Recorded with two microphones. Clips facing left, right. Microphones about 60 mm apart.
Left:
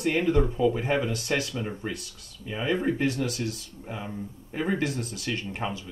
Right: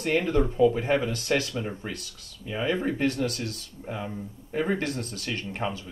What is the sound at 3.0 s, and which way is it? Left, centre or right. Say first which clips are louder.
Speech: right 1 dB; right.